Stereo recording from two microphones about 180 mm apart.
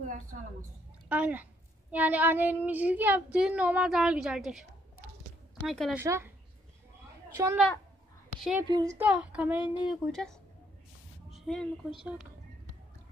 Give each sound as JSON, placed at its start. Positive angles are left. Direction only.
{"t": 0.0, "sound": "speech", "side_deg": -45}
{"t": 1.0, "sound": "speech", "side_deg": -10}
{"t": 5.7, "sound": "a woman's voice", "side_deg": 0}
{"t": 5.9, "sound": "speech", "side_deg": -15}
{"t": 8.4, "sound": "a woman's voice", "side_deg": 0}
{"t": 8.6, "sound": "a woman's voice", "side_deg": -20}
{"t": 8.9, "sound": "speech", "side_deg": -10}
{"t": 11.3, "sound": "a woman's voice", "side_deg": 5}